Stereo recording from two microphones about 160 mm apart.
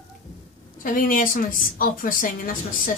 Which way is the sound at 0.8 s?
60° left (ahead or behind).